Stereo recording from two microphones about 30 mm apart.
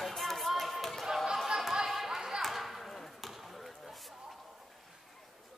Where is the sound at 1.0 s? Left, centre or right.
Centre.